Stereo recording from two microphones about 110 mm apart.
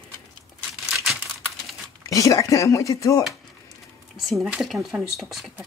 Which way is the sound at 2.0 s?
30° left (ahead or behind).